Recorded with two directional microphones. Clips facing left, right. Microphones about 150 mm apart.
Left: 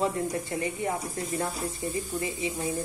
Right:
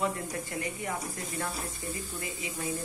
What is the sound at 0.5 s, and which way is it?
Speech, 25° left (ahead or behind).